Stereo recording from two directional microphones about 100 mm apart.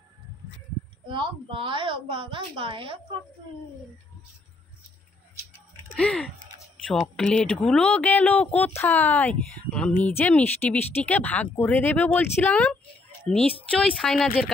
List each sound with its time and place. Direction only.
1.0 s a woman's voice: 55° right (ahead or behind)
5.9 s speech: 10° left (ahead or behind)
13.7 s speech: 5° left (ahead or behind)